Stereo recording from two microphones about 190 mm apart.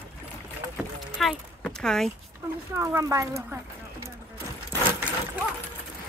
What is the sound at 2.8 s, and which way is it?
Speech, 15° right (ahead or behind).